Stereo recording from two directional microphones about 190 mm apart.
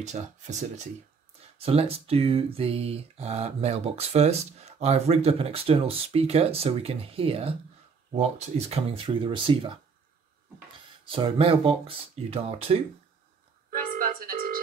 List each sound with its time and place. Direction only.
0.0 s speech: 35° right (ahead or behind)
11.1 s speech: 30° right (ahead or behind)
13.7 s telephone: 45° right (ahead or behind)